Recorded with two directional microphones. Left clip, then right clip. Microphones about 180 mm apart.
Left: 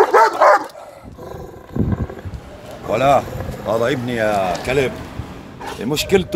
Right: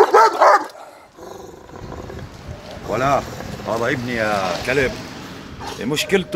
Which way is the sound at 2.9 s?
55° left (ahead or behind).